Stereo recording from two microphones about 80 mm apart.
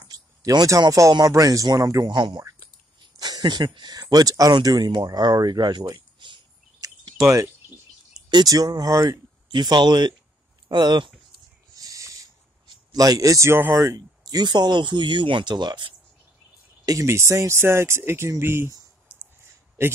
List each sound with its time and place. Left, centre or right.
0.4 s speech: right
2.0 s speech: right
6.8 s a sound: right
8.3 s speech: right
9.5 s speech: right
11.7 s owl: right
12.9 s speech: right
13.5 s speech: right
13.7 s speech: right
17.0 s speech: right
19.8 s speech: right